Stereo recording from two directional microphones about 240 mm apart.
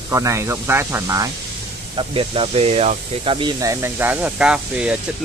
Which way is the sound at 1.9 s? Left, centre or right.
Right.